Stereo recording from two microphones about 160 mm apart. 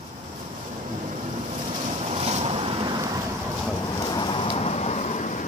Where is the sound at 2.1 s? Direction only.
40° right (ahead or behind).